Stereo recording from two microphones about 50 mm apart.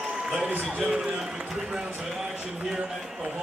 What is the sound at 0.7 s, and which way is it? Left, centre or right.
Speech, centre.